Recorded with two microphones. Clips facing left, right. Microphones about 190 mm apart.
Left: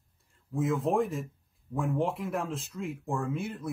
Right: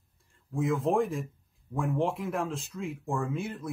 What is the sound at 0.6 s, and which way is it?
A man's voice, centre (ahead or behind).